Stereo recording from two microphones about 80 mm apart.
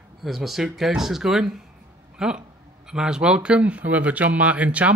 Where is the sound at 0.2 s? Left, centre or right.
Centre.